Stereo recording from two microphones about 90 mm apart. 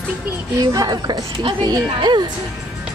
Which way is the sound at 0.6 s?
45° right (ahead or behind).